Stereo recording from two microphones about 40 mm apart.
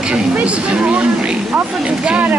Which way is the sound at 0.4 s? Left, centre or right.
Right.